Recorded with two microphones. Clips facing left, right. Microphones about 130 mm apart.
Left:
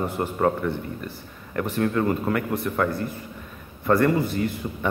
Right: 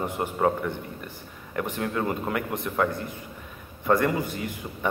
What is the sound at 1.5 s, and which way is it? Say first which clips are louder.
Speech: left 5 dB; 15° right (ahead or behind).